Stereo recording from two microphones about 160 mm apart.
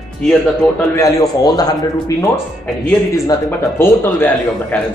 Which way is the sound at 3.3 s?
15° left (ahead or behind).